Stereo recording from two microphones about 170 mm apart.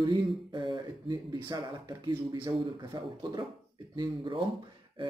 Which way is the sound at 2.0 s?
30° right (ahead or behind).